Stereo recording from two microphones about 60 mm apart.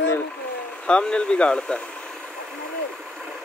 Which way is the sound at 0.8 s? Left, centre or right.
Centre.